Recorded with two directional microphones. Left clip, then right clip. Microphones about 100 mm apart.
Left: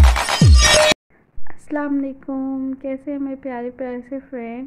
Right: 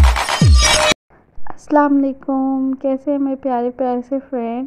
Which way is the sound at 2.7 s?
45° right (ahead or behind).